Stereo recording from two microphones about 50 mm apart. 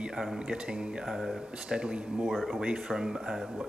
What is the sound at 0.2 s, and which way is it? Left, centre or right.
Speech, centre.